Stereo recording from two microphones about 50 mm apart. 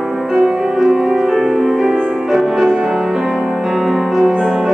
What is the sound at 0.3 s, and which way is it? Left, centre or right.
Music, centre.